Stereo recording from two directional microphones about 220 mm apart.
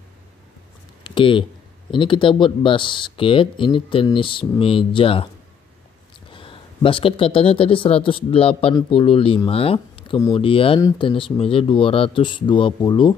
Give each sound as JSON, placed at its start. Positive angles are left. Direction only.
{"t": 1.0, "sound": "a sound", "side_deg": 25}
{"t": 2.0, "sound": "speech", "side_deg": 20}
{"t": 6.3, "sound": "speech", "side_deg": 25}